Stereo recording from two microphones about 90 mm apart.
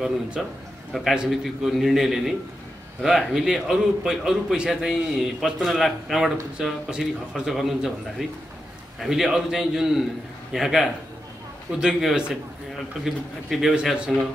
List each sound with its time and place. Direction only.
0.0 s a man's voice: 5° right (ahead or behind)